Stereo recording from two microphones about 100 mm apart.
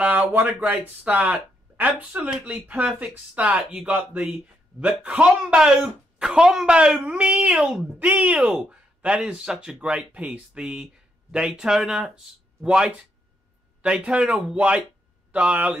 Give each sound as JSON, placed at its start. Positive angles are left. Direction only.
{"t": 0.0, "sound": "speech", "side_deg": -15}